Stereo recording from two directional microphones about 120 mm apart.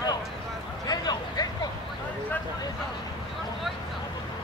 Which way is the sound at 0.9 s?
35° left (ahead or behind).